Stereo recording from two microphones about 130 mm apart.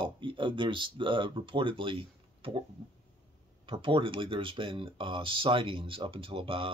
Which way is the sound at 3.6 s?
45° right (ahead or behind).